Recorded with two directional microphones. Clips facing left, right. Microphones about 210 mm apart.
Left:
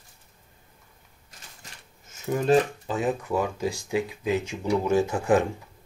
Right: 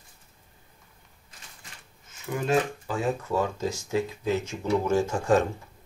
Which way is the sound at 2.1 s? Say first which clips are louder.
Left 5 dB; 40° left (ahead or behind).